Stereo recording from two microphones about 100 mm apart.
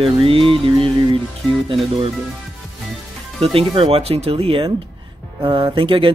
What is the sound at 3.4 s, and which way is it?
Speech, 70° right (ahead or behind).